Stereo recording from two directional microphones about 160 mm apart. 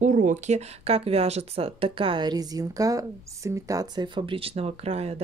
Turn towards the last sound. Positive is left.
turn(degrees=-40)  # may be behind; listen again after turning